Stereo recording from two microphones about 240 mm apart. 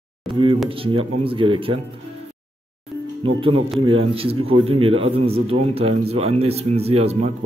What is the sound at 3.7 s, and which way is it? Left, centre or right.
A man's voice, right.